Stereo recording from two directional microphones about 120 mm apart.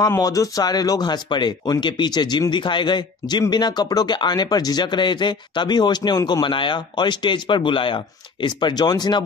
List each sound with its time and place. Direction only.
0.2 s speech: 30° left (ahead or behind)